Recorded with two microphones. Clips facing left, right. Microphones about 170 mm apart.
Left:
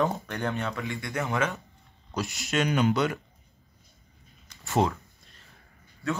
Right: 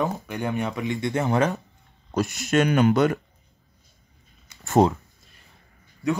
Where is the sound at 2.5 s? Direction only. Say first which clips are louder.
Right 6 dB; 55° right (ahead or behind).